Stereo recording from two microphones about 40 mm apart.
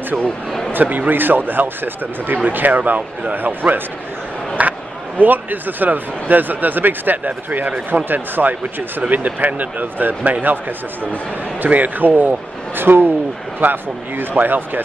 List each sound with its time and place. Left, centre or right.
0.7 s speech: right
4.6 s speech: right
11.7 s a man's voice: right